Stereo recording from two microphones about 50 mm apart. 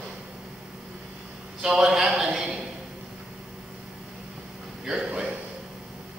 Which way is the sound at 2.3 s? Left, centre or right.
Centre.